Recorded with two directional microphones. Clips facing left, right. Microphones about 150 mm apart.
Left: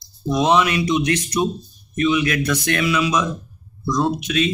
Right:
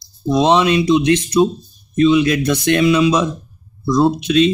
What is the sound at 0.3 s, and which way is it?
Speech, 25° right (ahead or behind).